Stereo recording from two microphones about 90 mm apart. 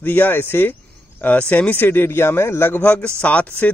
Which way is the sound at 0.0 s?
20° left (ahead or behind).